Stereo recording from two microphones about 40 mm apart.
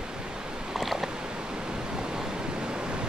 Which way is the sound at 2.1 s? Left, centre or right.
Centre.